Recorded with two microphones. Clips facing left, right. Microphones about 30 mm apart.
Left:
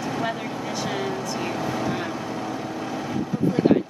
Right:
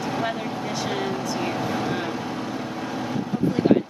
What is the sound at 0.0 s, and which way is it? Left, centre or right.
Vehicle, centre.